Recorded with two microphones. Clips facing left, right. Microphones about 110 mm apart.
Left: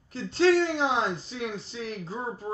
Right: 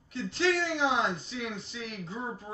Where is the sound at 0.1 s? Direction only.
35° left (ahead or behind).